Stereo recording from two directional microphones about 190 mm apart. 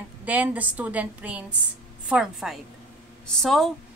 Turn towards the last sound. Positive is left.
turn(degrees=0)  # may be behind; listen again after turning